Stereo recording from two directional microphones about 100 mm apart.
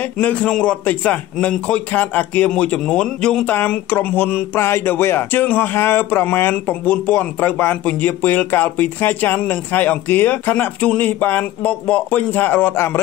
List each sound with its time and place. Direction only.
0.2 s a man's voice: 15° left (ahead or behind)